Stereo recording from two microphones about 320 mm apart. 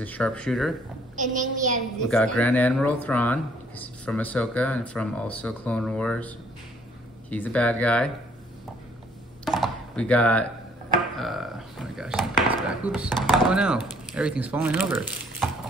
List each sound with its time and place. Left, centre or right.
0.0 s speech: centre
1.1 s child singing: right
2.0 s speech: centre
9.4 s a sound: centre
11.1 s speech: centre